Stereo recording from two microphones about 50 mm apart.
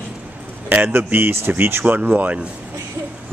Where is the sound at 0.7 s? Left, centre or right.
Right.